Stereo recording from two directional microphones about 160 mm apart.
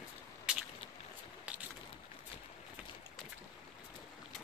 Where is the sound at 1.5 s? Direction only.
10° right (ahead or behind).